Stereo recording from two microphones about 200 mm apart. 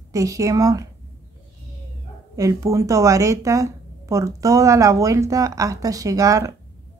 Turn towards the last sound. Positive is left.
turn(degrees=-15)  # may be behind; listen again after turning